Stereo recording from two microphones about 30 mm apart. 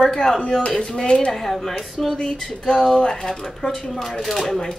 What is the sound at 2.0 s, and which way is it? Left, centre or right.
Speech, left.